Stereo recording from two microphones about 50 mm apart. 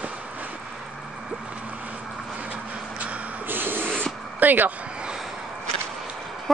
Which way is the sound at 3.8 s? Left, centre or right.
Centre.